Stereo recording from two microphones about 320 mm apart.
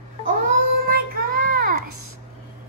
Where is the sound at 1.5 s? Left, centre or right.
Right.